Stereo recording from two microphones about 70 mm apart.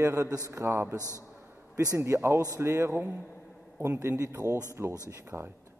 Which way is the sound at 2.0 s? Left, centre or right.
Right.